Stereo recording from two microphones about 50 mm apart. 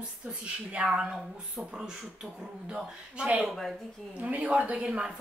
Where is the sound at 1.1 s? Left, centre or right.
Centre.